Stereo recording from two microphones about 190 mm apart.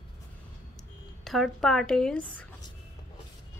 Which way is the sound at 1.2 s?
Centre (ahead or behind).